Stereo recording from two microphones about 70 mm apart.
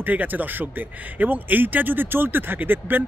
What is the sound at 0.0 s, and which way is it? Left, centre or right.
Speech, right.